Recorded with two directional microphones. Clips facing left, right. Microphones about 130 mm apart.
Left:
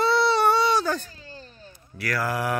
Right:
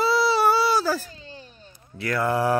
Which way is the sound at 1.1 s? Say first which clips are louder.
Right 2 dB; 20° right (ahead or behind).